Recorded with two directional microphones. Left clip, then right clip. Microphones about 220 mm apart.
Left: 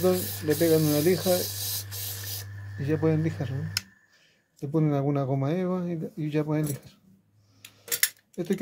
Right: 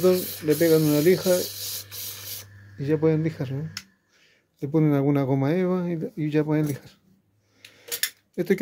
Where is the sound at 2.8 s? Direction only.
15° right (ahead or behind).